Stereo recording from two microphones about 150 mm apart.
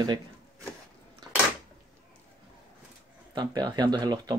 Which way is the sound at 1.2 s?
30° right (ahead or behind).